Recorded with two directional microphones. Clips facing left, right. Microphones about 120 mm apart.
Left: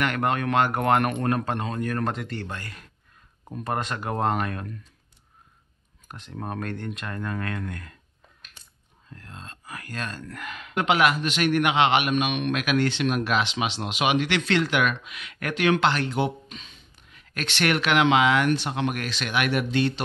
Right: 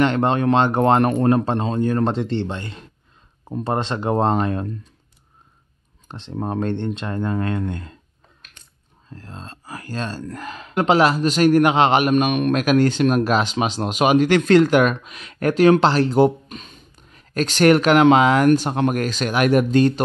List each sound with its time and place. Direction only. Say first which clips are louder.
0.0 s speech: right 7 dB; 25° right (ahead or behind)
6.0 s speech: right 7 dB; 30° right (ahead or behind)
9.1 s speech: right 6 dB; 30° right (ahead or behind)